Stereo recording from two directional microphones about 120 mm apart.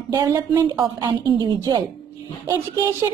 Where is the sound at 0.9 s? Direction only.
35° right (ahead or behind).